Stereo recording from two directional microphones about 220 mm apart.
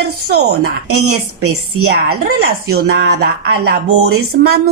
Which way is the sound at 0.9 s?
90° right.